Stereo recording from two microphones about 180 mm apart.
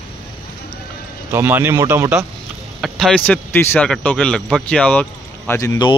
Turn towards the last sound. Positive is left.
turn(degrees=20)  # may be behind; listen again after turning